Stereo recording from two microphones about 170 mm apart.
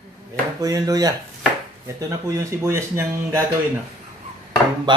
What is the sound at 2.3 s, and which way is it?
Speech, 15° right (ahead or behind).